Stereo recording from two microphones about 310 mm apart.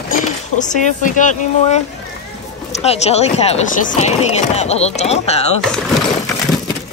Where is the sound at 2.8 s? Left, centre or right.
Centre.